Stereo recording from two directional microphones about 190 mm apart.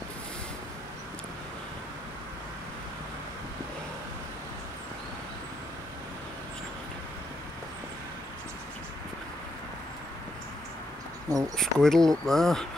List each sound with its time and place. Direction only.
11.2 s speech: 15° right (ahead or behind)
11.5 s speech: centre (ahead or behind)